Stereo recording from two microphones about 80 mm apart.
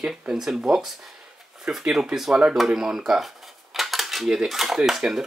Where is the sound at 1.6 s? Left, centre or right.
Centre.